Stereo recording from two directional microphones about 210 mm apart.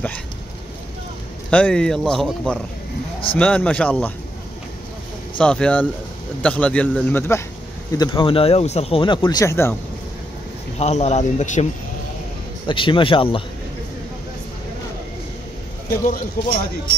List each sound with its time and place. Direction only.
1.5 s speech: 5° left (ahead or behind)
5.4 s speech: 5° left (ahead or behind)
10.8 s speech: 30° left (ahead or behind)
12.6 s speech: 25° left (ahead or behind)
16.1 s speech: 40° left (ahead or behind)